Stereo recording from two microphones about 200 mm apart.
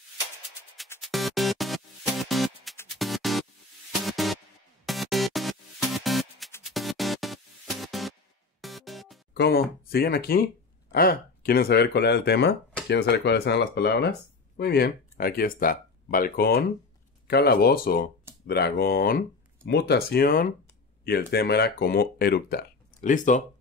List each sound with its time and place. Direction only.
1.0 s music: centre (ahead or behind)
9.3 s speech: 55° left (ahead or behind)
22.9 s speech: 40° left (ahead or behind)